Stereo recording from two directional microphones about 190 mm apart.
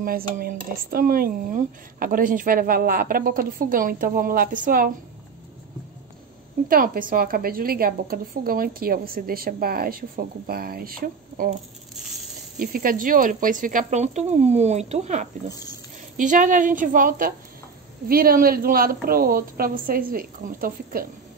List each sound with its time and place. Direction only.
0.0 s speech: 50° right (ahead or behind)
6.7 s speech: 50° right (ahead or behind)
12.5 s speech: 50° right (ahead or behind)